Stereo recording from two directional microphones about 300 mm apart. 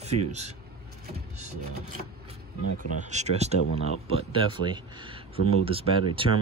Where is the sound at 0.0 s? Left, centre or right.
Right.